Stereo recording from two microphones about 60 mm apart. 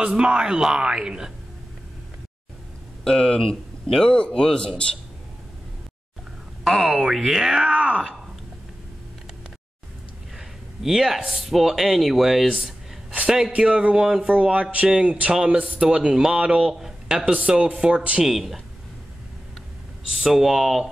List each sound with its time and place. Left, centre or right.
0.0 s a man's voice: centre
3.0 s speech: centre
6.6 s speech: centre
10.3 s a man's voice: centre
13.6 s a man's voice: centre
14.3 s a man's voice: centre
20.2 s speech: centre